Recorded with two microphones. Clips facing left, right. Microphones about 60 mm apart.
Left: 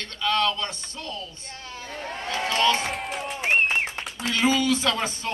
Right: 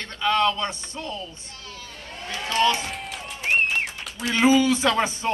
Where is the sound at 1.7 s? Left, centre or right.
Left.